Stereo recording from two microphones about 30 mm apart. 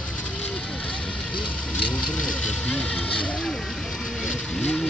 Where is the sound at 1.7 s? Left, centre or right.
Left.